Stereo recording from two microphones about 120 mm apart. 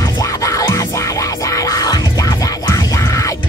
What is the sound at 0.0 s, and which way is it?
Music, 25° left (ahead or behind).